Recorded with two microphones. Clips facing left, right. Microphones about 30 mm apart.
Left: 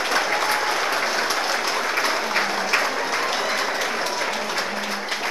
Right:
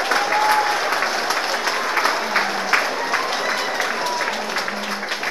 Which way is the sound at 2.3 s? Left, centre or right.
Right.